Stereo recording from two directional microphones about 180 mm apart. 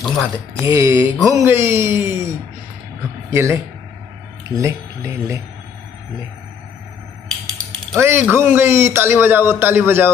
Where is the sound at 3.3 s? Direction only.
15° right (ahead or behind).